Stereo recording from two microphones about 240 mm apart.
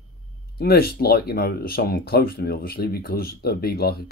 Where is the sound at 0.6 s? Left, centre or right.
Left.